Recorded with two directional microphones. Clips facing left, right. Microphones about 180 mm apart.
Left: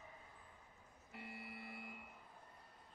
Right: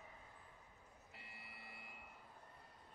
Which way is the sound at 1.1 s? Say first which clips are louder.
Left 11 dB; 55° left (ahead or behind).